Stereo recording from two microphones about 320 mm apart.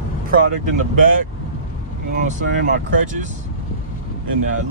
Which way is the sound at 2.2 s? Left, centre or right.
Right.